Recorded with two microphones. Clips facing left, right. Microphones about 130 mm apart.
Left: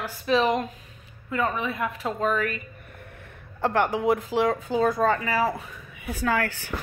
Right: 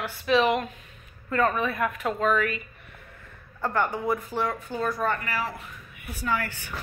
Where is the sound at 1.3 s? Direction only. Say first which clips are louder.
Right 2 dB; 15° left (ahead or behind); by 2.6 s 40° left (ahead or behind).